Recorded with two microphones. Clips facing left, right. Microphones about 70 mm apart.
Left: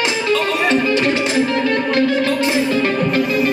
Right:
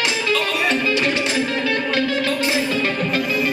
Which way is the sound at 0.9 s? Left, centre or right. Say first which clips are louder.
Left 3 dB; left.